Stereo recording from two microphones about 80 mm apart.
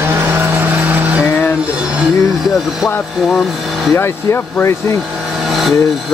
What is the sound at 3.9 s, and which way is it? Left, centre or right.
Speech, left.